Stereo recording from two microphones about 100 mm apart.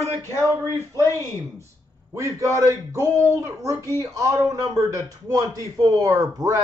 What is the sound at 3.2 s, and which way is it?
A man's voice, 30° right (ahead or behind).